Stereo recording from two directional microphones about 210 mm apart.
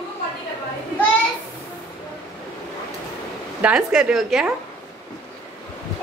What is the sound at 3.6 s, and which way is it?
Speech, 5° right (ahead or behind).